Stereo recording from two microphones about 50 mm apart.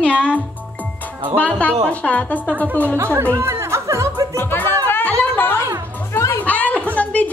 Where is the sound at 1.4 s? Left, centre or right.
Left.